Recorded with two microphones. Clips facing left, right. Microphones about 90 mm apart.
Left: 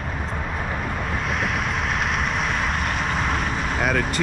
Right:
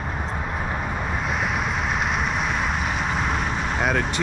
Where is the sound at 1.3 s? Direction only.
Centre (ahead or behind).